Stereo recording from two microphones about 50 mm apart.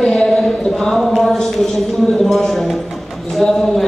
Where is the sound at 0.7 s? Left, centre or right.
Centre.